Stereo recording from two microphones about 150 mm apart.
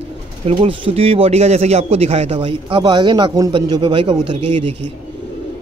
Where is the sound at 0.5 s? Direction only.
40° right (ahead or behind).